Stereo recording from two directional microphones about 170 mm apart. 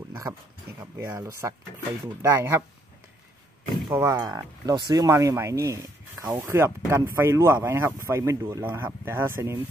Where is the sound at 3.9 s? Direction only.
15° right (ahead or behind).